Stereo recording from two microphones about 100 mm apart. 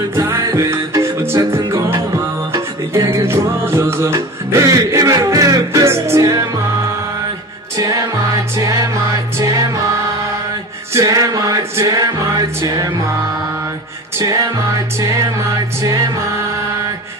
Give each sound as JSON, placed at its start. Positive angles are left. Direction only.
{"t": 0.1, "sound": "music", "side_deg": -30}
{"t": 11.0, "sound": "music", "side_deg": -35}